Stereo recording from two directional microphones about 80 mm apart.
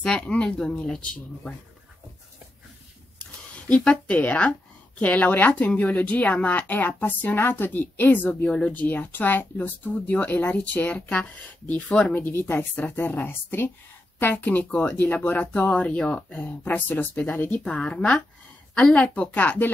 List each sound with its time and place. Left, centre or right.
0.0 s speech: centre
3.6 s speech: centre